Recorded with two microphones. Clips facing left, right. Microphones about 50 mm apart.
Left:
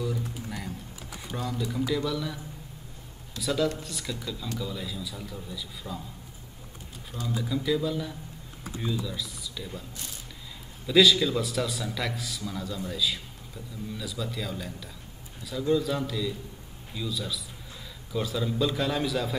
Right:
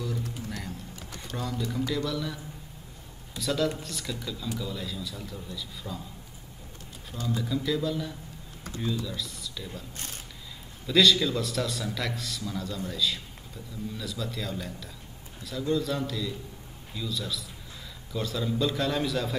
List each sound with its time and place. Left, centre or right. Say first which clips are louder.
0.5 s a sound: left 1 dB; centre
3.3 s a man's voice: left 1 dB; centre
7.1 s a man's voice: right 1 dB; centre
9.9 s speech: right 1 dB; right
10.9 s a man's voice: left 2 dB; centre